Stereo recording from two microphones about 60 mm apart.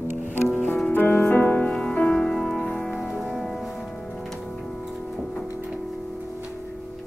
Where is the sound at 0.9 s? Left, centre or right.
Left.